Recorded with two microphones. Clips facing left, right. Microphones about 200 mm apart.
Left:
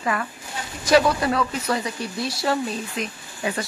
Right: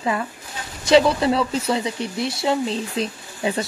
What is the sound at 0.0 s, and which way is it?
Speech, 20° right (ahead or behind).